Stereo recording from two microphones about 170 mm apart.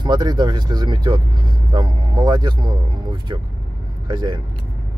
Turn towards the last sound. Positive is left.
turn(degrees=-25)  # may be behind; listen again after turning